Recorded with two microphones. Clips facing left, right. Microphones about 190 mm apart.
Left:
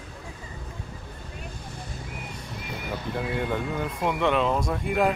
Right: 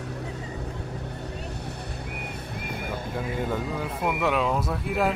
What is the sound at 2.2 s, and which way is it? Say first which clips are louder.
Vehicle: right 3 dB; 55° right (ahead or behind).